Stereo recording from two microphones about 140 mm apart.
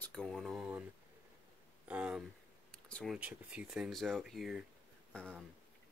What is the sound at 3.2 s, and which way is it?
Speech, 10° right (ahead or behind).